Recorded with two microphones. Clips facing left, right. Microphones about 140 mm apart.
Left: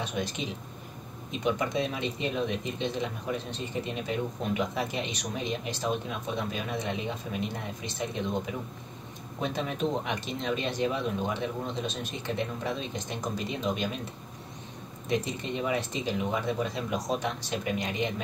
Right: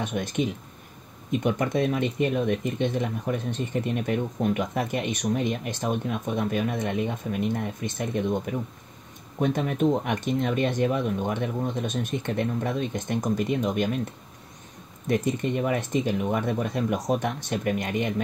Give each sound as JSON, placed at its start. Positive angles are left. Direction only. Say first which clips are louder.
{"t": 0.0, "sound": "speech", "louder": "right 6 dB", "side_deg": -50}
{"t": 15.0, "sound": "speech", "louder": "right 6 dB", "side_deg": -50}